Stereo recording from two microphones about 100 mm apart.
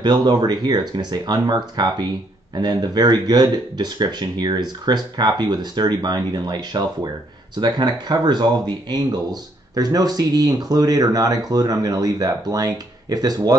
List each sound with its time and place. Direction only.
0.0 s speech: 45° right (ahead or behind)